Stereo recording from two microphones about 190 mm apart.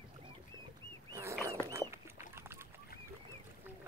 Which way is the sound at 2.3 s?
15° right (ahead or behind).